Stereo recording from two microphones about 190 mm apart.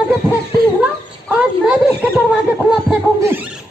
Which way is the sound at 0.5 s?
50° right (ahead or behind).